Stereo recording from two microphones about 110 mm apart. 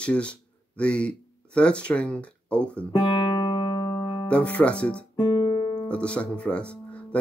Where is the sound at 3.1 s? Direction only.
45° left (ahead or behind).